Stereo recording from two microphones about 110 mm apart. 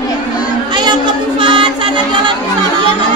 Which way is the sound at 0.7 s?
45° right (ahead or behind).